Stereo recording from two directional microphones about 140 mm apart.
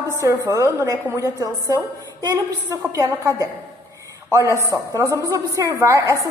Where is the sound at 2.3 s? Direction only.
20° right (ahead or behind).